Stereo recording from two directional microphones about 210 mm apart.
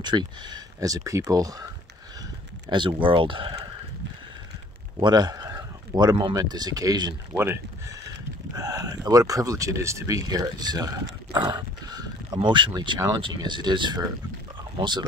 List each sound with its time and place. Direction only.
0.0 s speech: 20° right (ahead or behind)
2.7 s speech: 25° right (ahead or behind)
5.0 s speech: 20° right (ahead or behind)